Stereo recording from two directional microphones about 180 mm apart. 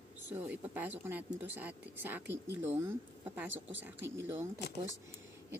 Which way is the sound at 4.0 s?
90° right.